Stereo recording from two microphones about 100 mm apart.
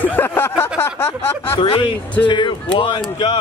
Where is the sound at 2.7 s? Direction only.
60° left (ahead or behind).